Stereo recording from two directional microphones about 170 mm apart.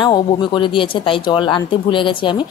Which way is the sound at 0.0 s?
25° left (ahead or behind).